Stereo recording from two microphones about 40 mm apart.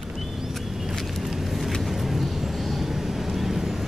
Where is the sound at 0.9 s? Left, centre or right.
Centre.